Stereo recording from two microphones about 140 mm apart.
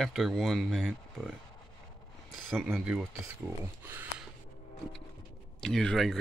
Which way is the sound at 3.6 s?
15° right (ahead or behind).